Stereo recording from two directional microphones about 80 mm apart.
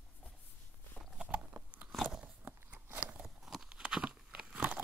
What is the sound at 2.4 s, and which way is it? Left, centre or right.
Walk, right.